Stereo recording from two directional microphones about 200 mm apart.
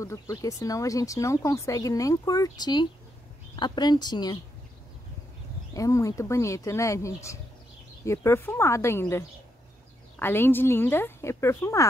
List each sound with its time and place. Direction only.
0.0 s speech: 15° left (ahead or behind)
5.8 s speech: 15° left (ahead or behind)